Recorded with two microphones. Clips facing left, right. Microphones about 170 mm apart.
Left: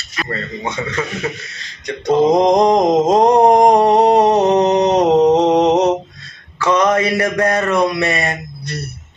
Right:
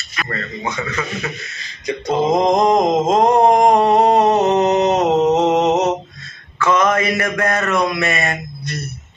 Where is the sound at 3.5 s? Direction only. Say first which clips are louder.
Left 2 dB; 35° left (ahead or behind).